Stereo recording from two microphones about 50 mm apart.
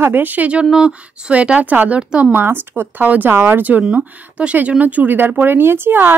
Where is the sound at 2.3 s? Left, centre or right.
Right.